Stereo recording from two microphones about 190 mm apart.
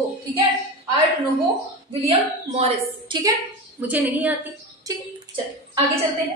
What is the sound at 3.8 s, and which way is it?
Speech, 10° right (ahead or behind).